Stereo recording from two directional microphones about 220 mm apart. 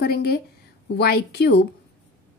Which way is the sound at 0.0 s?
45° left (ahead or behind).